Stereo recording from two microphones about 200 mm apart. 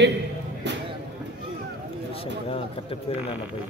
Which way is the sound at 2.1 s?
30° left (ahead or behind).